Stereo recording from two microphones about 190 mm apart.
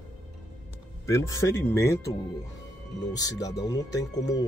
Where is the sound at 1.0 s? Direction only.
15° left (ahead or behind).